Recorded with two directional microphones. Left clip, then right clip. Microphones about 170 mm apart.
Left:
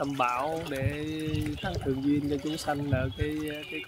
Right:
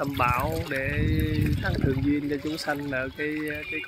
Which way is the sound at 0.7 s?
5° right (ahead or behind).